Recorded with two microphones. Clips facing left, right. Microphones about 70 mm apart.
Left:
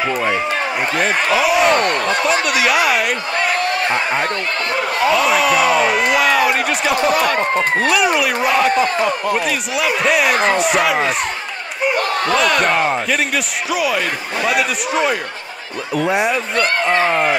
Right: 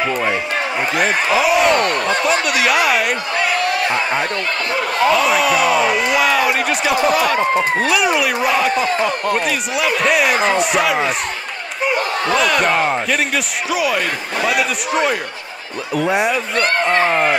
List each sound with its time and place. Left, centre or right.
0.0 s speech: centre
1.8 s speech: left
2.0 s speech: centre
4.7 s speech: centre
12.4 s speech: centre